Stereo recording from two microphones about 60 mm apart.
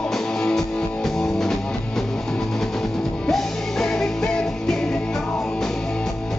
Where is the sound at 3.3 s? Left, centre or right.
Centre.